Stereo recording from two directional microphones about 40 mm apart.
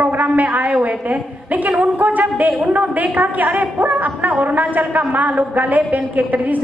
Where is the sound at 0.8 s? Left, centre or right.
Right.